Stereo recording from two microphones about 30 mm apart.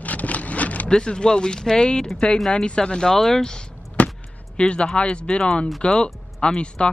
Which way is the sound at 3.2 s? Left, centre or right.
Centre.